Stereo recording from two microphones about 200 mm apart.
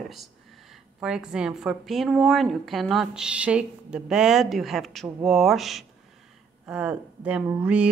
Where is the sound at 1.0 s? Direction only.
5° right (ahead or behind).